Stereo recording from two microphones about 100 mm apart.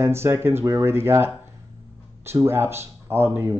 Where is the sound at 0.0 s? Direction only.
25° right (ahead or behind).